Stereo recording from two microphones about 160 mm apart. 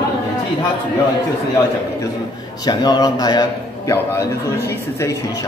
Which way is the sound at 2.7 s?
25° left (ahead or behind).